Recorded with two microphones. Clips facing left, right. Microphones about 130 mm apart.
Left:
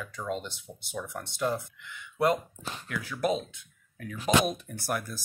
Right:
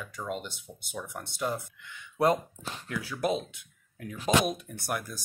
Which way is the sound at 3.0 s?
10° right (ahead or behind).